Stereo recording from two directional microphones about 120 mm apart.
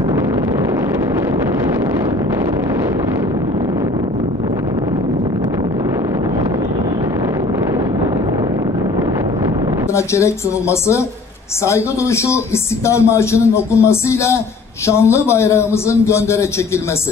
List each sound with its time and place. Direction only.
9.9 s speech: 25° left (ahead or behind)